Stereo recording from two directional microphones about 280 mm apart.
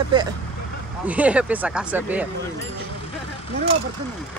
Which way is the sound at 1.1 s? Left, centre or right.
Centre.